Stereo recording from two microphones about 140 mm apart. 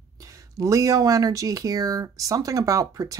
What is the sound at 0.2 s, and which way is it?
Speech, 25° right (ahead or behind).